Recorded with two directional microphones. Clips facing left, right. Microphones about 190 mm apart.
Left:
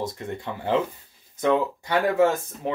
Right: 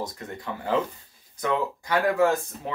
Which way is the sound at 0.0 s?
25° left (ahead or behind).